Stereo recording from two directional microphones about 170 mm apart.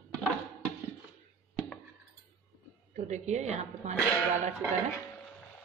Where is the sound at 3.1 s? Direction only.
40° right (ahead or behind).